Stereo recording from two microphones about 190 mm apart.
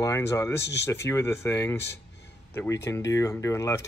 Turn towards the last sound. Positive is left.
turn(degrees=15)  # may be behind; listen again after turning